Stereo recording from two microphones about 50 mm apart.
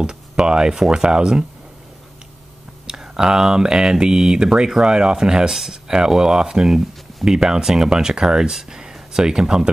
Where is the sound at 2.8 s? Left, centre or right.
Centre.